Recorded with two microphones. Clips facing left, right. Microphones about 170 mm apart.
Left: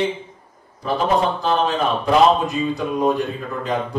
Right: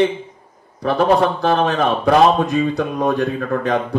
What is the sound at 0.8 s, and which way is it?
A man's voice, 65° right (ahead or behind).